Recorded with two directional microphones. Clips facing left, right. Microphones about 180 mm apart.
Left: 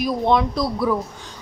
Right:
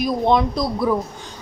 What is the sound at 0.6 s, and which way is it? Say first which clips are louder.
Speech: right 1 dB; 15° right (ahead or behind).